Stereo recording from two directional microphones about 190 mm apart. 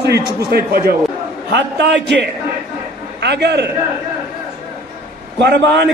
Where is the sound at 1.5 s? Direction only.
70° right (ahead or behind).